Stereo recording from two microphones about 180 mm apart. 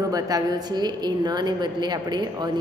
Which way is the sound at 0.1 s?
20° right (ahead or behind).